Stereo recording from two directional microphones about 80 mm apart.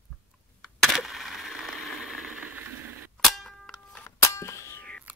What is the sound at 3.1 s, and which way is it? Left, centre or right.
Clang, centre.